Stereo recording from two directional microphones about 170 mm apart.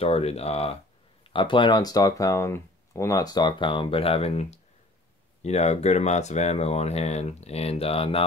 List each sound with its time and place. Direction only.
0.0 s speech: 35° left (ahead or behind)